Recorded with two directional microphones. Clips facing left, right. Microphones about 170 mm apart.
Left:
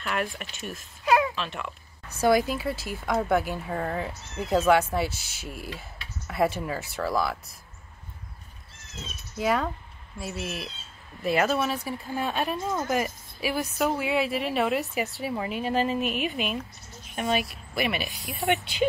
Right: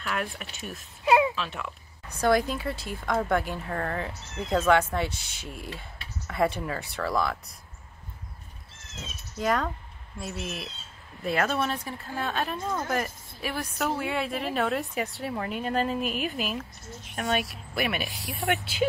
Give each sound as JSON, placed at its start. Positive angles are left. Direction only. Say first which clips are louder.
{"t": 0.0, "sound": "speech", "louder": "left 2 dB", "side_deg": 0}
{"t": 1.0, "sound": "a sound", "louder": "right 1 dB", "side_deg": -25}
{"t": 1.3, "sound": "speech", "louder": "left 1 dB", "side_deg": 0}
{"t": 9.4, "sound": "speech", "louder": "left 1 dB", "side_deg": 5}